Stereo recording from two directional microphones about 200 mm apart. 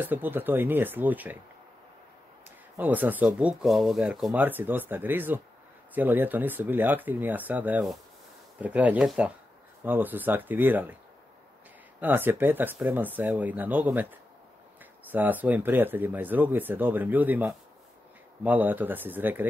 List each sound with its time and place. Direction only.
0.0 s speech: 10° right (ahead or behind)
2.8 s speech: 10° right (ahead or behind)
12.0 s speech: 10° right (ahead or behind)
15.0 s speech: 10° right (ahead or behind)